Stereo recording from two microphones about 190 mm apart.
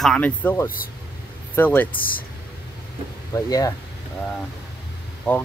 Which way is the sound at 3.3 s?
20° left (ahead or behind).